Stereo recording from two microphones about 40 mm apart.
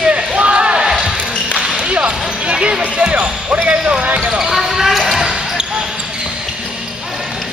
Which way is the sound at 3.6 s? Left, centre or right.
Right.